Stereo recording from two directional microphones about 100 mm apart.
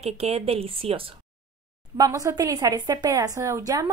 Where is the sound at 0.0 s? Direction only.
90° right; by 1.1 s 65° right (ahead or behind).